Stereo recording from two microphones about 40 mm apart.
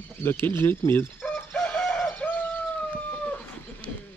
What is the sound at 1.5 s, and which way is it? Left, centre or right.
Bird, left.